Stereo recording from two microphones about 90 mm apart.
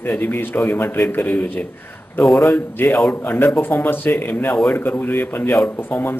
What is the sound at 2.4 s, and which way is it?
Speech, 25° left (ahead or behind).